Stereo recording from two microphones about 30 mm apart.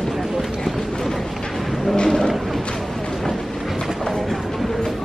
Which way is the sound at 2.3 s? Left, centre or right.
Centre.